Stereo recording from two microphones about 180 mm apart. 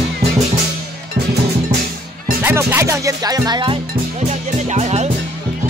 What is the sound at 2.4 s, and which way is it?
Music, 15° right (ahead or behind).